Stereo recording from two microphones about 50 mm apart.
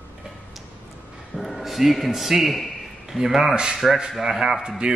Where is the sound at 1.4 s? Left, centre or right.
Centre.